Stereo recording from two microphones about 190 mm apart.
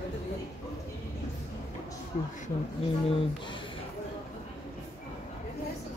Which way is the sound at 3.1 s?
25° left (ahead or behind).